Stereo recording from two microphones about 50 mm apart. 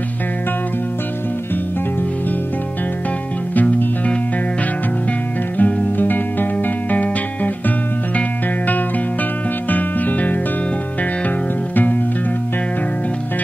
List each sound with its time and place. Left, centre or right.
3.5 s music: left
5.6 s music: left